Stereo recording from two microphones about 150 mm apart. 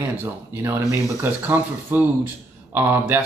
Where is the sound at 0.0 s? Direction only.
15° right (ahead or behind).